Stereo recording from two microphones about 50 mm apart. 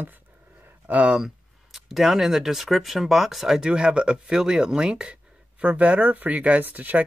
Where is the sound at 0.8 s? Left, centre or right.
Right.